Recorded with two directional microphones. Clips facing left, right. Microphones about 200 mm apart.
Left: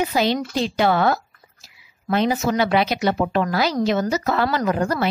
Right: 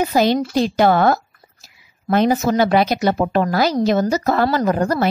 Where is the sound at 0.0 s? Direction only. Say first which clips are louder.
Right 4 dB; 45° right (ahead or behind).